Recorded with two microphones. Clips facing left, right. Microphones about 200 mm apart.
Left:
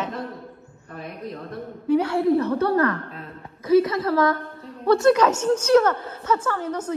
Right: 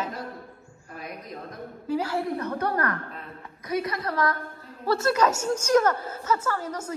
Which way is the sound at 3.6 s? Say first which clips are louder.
Left 11 dB; 25° left (ahead or behind).